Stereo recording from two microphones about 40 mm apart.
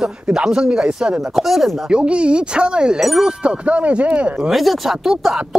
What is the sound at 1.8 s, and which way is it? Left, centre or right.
Speech, right.